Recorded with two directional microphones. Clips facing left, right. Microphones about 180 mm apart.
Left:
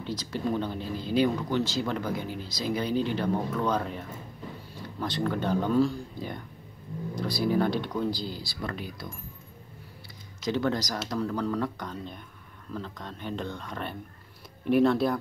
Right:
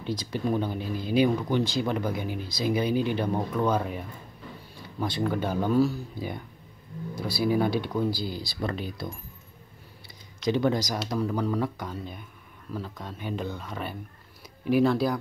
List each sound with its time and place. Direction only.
0.0 s speech: 15° right (ahead or behind)
5.0 s speech: 10° right (ahead or behind)
8.4 s speech: 25° right (ahead or behind)
10.5 s speech: 15° right (ahead or behind)